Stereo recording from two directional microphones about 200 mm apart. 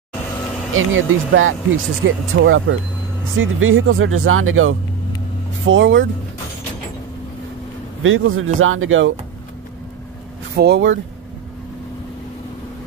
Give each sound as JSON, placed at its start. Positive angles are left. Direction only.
{"t": 0.3, "sound": "vehicle", "side_deg": 10}
{"t": 0.7, "sound": "speech", "side_deg": -85}
{"t": 3.3, "sound": "speech", "side_deg": -90}
{"t": 5.7, "sound": "speech", "side_deg": -70}
{"t": 8.0, "sound": "speech", "side_deg": -90}
{"t": 10.5, "sound": "speech", "side_deg": -55}